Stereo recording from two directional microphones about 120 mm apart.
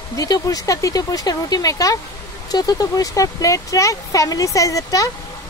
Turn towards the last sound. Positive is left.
turn(degrees=30)  # may be behind; listen again after turning